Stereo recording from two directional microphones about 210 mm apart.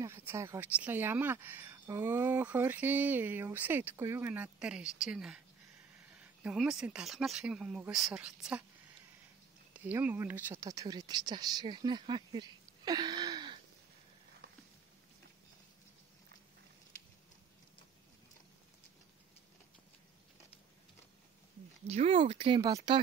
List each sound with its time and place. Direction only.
0.0 s speech: 10° right (ahead or behind)
6.4 s speech: 5° right (ahead or behind)
9.8 s speech: 5° right (ahead or behind)
21.8 s speech: 30° right (ahead or behind)